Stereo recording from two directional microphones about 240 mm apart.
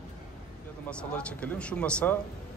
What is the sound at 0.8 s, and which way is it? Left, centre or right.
Speech, centre.